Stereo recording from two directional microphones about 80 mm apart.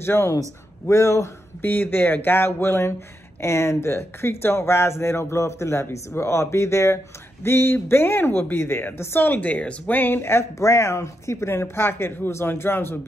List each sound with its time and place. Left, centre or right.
0.0 s speech: left
1.6 s a woman's voice: left